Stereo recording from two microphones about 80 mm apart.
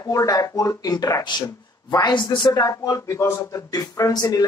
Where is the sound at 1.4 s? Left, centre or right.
Left.